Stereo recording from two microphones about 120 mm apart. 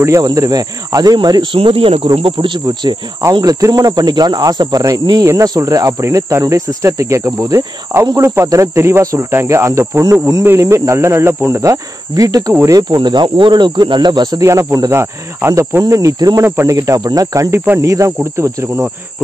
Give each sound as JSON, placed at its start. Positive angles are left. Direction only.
{"t": 0.0, "sound": "speech", "side_deg": -30}
{"t": 1.6, "sound": "speech", "side_deg": -50}
{"t": 2.3, "sound": "speech", "side_deg": -35}
{"t": 3.3, "sound": "cricket", "side_deg": -30}
{"t": 12.5, "sound": "speech", "side_deg": -30}
{"t": 15.8, "sound": "cricket", "side_deg": -25}